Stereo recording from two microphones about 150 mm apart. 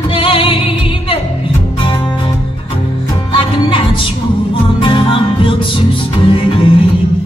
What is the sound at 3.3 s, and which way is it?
Music, 35° left (ahead or behind).